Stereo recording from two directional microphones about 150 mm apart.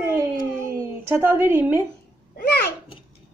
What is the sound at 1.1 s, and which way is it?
Speech, 10° right (ahead or behind).